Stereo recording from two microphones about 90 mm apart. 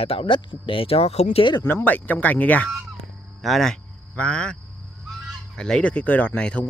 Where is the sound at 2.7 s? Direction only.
Centre (ahead or behind).